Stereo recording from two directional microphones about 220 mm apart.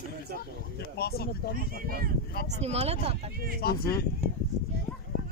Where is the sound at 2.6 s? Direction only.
30° right (ahead or behind).